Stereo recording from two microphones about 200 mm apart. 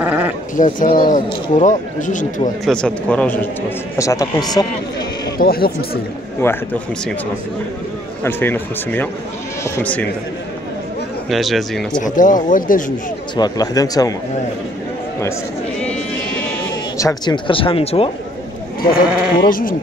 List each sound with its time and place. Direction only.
0.0 s sheep: 10° right (ahead or behind)
0.6 s speech: 40° left (ahead or behind)
2.6 s speech: 5° left (ahead or behind)
5.4 s speech: 50° left (ahead or behind)
6.4 s speech: 15° left (ahead or behind)
8.2 s speech: 10° left (ahead or behind)
11.2 s speech: centre (ahead or behind)
12.0 s speech: 40° left (ahead or behind)
13.4 s speech: 20° left (ahead or behind)
17.0 s speech: 20° left (ahead or behind)
19.3 s speech: 45° left (ahead or behind)